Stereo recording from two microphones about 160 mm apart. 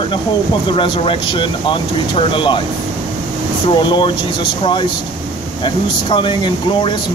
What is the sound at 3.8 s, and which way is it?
Speech, 30° left (ahead or behind).